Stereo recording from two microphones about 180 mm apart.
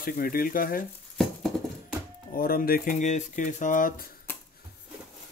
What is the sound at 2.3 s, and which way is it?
Speech, 55° left (ahead or behind).